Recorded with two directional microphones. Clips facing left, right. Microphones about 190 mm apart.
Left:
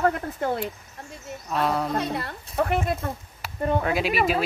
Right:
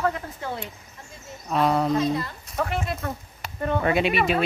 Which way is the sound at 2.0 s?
65° left (ahead or behind).